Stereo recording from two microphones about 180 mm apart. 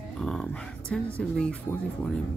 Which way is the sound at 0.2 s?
5° left (ahead or behind).